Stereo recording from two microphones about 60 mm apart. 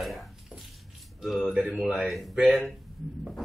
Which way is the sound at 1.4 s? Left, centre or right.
Right.